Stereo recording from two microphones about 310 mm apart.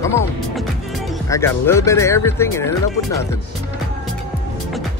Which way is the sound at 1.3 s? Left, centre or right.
Centre.